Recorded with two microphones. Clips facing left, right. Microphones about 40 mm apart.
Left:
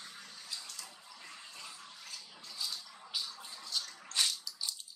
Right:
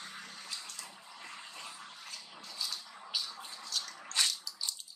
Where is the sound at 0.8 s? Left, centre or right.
Right.